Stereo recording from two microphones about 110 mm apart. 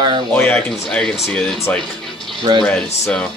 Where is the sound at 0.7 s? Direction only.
5° left (ahead or behind).